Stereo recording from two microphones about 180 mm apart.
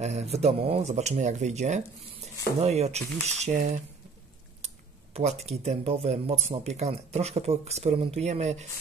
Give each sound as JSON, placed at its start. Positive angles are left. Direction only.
{"t": 0.0, "sound": "speech", "side_deg": -35}
{"t": 5.1, "sound": "speech", "side_deg": -35}